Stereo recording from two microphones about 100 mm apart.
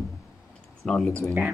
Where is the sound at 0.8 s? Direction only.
5° left (ahead or behind).